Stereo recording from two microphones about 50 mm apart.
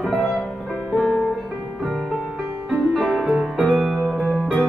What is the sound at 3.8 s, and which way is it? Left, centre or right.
Music, centre.